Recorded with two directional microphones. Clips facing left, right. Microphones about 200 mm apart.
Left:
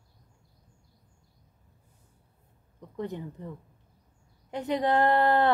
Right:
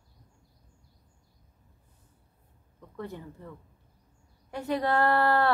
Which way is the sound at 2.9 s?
20° left (ahead or behind).